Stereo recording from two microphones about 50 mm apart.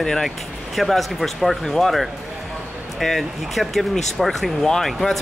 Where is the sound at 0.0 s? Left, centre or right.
Centre.